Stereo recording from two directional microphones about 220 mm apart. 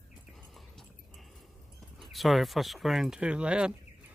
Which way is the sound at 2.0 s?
Centre (ahead or behind).